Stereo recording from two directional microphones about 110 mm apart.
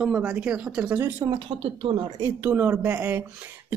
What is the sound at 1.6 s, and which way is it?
Speech, 55° right (ahead or behind).